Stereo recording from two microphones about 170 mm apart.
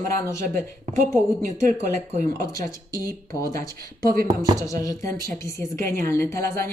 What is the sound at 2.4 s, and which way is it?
Speech, 20° left (ahead or behind).